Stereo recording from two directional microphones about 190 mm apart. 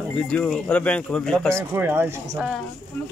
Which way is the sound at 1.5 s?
10° right (ahead or behind).